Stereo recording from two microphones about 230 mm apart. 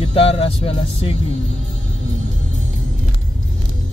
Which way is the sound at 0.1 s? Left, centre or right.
Left.